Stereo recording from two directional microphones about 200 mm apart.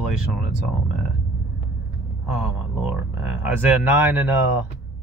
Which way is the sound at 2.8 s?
5° right (ahead or behind).